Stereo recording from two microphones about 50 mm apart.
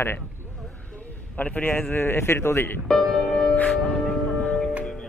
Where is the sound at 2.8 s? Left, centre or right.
Centre.